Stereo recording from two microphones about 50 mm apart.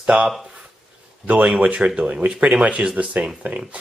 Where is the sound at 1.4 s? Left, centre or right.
Right.